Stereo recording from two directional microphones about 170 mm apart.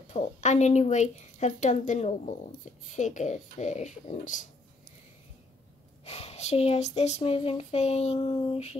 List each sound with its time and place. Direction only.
0.1 s a woman's voice: 45° left (ahead or behind)
6.0 s speech: 40° left (ahead or behind)